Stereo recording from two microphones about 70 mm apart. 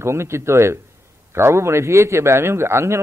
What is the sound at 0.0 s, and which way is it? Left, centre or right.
A man's voice, right.